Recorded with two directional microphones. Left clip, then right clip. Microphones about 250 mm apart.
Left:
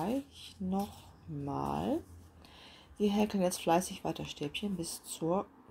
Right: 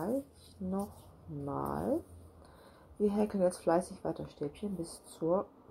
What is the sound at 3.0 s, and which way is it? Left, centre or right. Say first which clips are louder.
Speech: right 1 dB; left.